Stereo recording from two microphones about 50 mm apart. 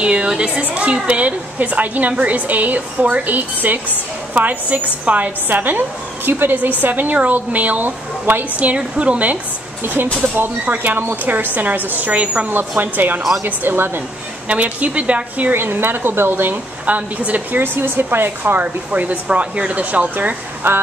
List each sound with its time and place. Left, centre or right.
0.0 s a woman's voice: right
10.2 s a woman's voice: right
11.2 s a woman's voice: right
12.4 s a woman's voice: right
14.5 s a woman's voice: right
15.5 s a woman's voice: right
16.8 s a woman's voice: right
17.6 s a woman's voice: right